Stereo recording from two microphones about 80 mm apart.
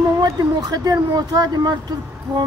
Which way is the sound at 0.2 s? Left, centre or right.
Right.